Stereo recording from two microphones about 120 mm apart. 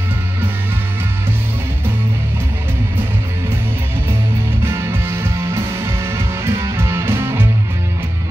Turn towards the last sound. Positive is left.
turn(degrees=-20)  # may be behind; listen again after turning